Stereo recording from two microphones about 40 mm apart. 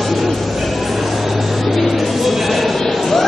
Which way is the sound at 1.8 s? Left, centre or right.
Centre.